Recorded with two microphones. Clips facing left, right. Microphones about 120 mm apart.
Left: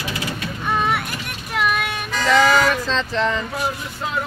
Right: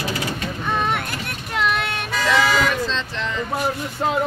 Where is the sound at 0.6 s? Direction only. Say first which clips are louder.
Left 2 dB; 10° left (ahead or behind).